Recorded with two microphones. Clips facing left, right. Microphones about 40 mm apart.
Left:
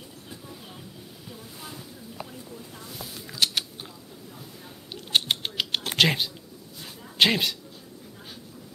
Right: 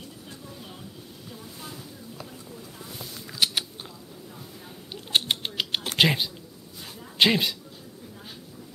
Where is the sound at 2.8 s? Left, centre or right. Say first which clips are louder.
Right 1 dB; centre.